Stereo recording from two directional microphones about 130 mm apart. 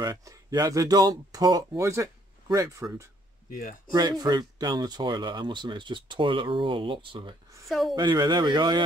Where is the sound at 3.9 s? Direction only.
30° right (ahead or behind).